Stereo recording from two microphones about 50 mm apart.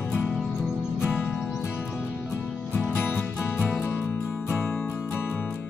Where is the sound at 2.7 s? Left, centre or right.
Left.